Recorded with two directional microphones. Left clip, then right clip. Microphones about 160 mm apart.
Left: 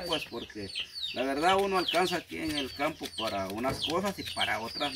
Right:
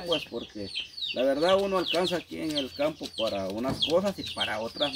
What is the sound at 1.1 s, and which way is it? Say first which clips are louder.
Speech: right 3 dB; 5° left (ahead or behind).